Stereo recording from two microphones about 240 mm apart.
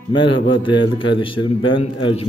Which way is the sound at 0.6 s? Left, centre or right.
Centre.